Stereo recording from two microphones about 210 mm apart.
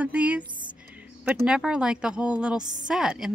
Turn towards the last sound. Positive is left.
turn(degrees=-5)  # may be behind; listen again after turning